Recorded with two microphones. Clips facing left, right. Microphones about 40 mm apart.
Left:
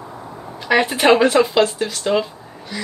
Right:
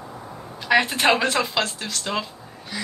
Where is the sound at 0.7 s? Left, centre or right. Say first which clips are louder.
Left 4 dB; centre.